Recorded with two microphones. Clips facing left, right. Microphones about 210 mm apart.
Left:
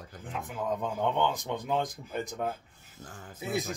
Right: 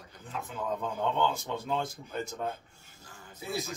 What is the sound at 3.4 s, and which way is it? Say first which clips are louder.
Speech: left 3 dB; 20° left (ahead or behind).